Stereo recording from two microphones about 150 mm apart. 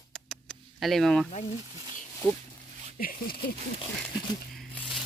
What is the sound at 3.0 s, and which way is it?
Speech, 75° left (ahead or behind).